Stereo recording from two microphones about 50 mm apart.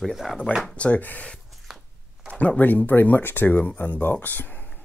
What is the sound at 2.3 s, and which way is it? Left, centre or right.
Speech, left.